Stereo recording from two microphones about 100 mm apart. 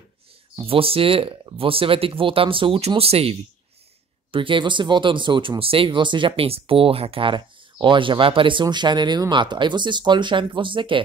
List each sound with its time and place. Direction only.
0.6 s speech: 70° right (ahead or behind)
4.3 s speech: 60° right (ahead or behind)